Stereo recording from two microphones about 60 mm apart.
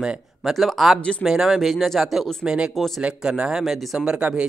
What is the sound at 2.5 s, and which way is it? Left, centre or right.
Speech, centre.